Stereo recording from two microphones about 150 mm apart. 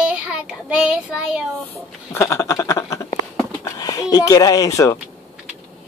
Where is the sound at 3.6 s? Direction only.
25° left (ahead or behind).